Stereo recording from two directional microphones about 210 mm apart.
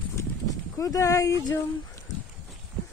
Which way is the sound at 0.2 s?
15° left (ahead or behind).